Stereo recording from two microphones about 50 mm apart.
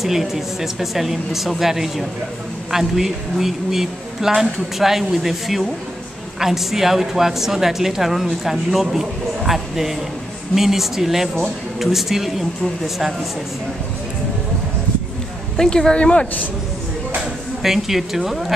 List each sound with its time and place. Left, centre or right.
0.0 s a woman's voice: centre
15.5 s speech: centre
17.6 s a woman's voice: centre